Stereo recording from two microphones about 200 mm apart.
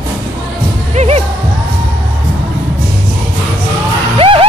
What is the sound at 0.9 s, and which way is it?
Music, 30° right (ahead or behind).